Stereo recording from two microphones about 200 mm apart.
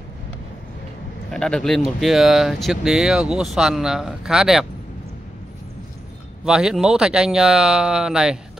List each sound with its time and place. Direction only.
1.3 s speech: 5° left (ahead or behind)
6.4 s speech: 5° right (ahead or behind)